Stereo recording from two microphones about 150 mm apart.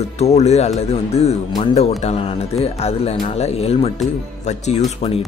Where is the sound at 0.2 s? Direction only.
45° left (ahead or behind).